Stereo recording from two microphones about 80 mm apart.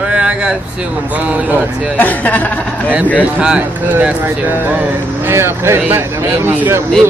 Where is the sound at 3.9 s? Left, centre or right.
Right.